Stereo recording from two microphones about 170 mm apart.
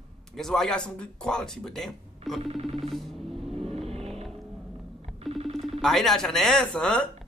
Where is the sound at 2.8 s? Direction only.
Centre (ahead or behind).